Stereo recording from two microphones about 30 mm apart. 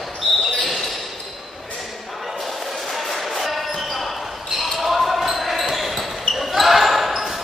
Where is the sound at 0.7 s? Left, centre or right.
Centre.